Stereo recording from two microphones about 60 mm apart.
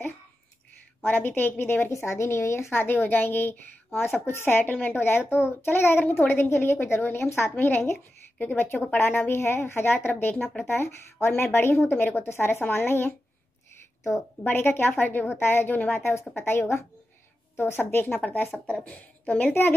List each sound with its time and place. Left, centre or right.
1.0 s speech: left
1.9 s a woman's voice: left
7.5 s a woman's voice: left
10.7 s speech: left
14.4 s a woman's voice: left